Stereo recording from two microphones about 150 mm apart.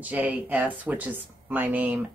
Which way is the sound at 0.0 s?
10° right (ahead or behind).